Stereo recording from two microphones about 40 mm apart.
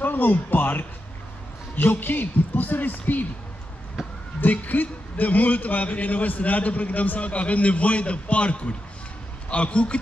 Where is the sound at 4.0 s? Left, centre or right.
Centre.